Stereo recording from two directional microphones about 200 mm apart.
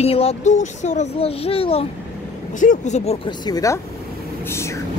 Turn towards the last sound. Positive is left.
turn(degrees=15)  # may be behind; listen again after turning